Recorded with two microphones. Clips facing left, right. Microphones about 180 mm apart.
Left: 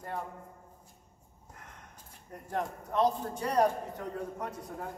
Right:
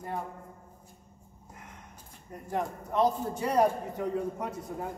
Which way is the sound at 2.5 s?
10° right (ahead or behind).